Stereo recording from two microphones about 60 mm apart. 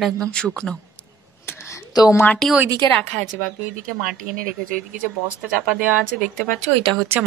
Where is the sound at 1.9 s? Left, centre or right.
Left.